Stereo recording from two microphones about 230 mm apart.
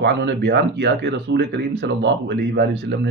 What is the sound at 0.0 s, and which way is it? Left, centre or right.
Speech, right.